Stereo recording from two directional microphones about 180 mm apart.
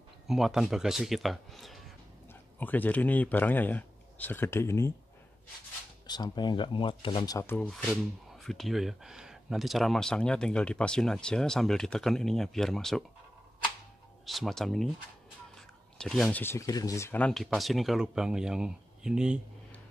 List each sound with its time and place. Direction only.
0.3 s speech: centre (ahead or behind); by 4.9 s 15° left (ahead or behind)
6.0 s speech: 25° left (ahead or behind)
7.3 s speech: 10° left (ahead or behind)
14.2 s speech: centre (ahead or behind)
16.0 s speech: 5° left (ahead or behind)